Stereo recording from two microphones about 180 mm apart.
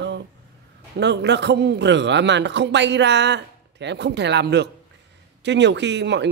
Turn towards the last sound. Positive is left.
turn(degrees=-75)  # may be behind; listen again after turning